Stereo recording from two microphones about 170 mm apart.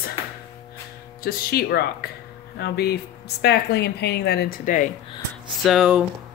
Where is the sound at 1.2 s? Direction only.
65° left (ahead or behind).